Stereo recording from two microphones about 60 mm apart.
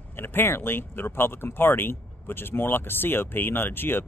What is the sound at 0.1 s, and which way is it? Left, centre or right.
Speech, left.